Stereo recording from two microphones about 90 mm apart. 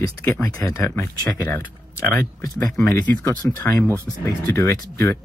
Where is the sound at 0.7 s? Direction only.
35° left (ahead or behind).